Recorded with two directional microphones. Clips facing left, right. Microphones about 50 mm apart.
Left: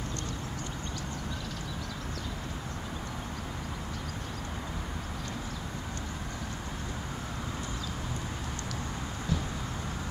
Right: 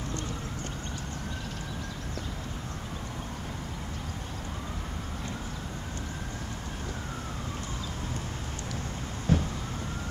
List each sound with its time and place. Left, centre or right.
9.3 s vehicle: right